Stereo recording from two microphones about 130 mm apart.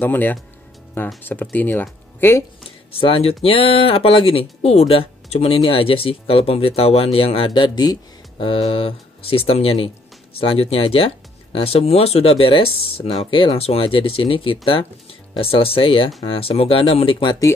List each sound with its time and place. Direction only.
0.0 s speech: 15° left (ahead or behind)
2.9 s speech: 45° left (ahead or behind)